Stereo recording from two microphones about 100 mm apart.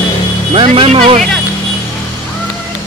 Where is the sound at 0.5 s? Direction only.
65° right (ahead or behind).